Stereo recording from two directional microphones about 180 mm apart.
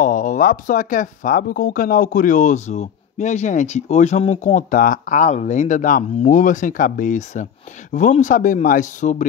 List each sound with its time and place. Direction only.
0.0 s speech: 50° left (ahead or behind)